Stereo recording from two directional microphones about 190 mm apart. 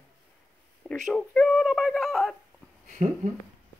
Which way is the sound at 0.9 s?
Centre (ahead or behind).